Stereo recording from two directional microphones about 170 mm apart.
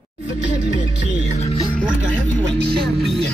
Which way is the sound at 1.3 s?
40° left (ahead or behind).